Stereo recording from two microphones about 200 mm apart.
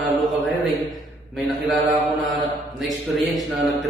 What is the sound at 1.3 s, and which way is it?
Speech, centre (ahead or behind).